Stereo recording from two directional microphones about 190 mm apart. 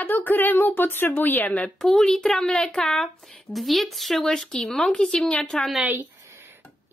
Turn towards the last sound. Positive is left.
turn(degrees=-10)  # may be behind; listen again after turning